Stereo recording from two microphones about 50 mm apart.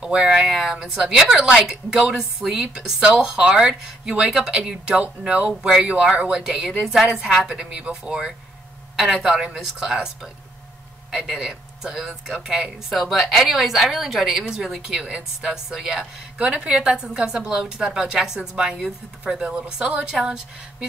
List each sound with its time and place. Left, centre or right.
0.0 s a woman's voice: centre
6.3 s a woman's voice: centre
16.3 s a woman's voice: right